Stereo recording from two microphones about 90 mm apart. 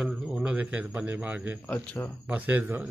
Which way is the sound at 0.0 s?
10° right (ahead or behind).